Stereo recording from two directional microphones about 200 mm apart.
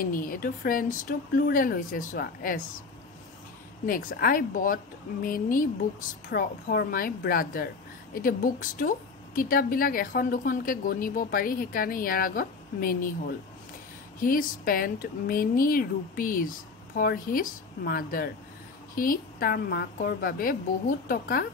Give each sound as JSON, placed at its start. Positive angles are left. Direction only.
{"t": 0.0, "sound": "a woman's voice", "side_deg": 45}
{"t": 3.8, "sound": "a woman's voice", "side_deg": 45}
{"t": 14.2, "sound": "a woman's voice", "side_deg": 45}